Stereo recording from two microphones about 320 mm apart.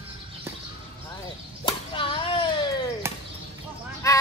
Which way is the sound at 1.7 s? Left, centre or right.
Centre.